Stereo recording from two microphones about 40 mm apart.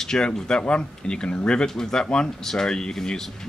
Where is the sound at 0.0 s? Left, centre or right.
Centre.